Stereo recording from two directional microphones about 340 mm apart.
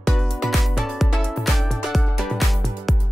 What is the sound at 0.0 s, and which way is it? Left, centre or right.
Music, centre.